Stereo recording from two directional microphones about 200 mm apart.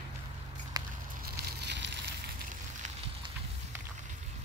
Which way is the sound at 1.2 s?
55° right (ahead or behind).